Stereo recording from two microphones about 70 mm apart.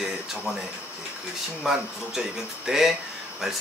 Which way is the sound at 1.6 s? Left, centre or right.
Centre.